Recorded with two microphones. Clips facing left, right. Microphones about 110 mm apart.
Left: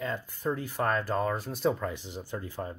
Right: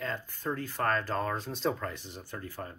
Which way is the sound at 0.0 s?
10° left (ahead or behind).